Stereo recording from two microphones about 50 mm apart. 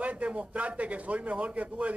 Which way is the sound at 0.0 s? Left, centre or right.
Right.